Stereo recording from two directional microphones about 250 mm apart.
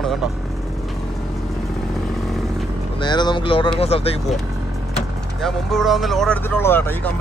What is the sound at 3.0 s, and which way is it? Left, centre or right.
Speech, centre.